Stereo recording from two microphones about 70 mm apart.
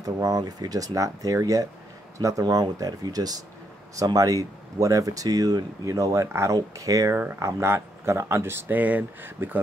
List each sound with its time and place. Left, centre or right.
0.0 s speech: right
2.4 s speech: right
3.9 s speech: right